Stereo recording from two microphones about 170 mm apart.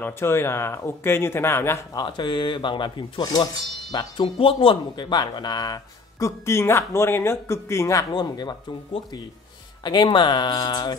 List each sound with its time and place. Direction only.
0.0 s speech: 15° left (ahead or behind)
2.0 s speech: 25° left (ahead or behind)